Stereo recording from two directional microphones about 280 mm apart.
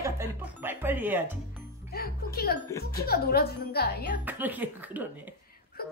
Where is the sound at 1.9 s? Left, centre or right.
Left.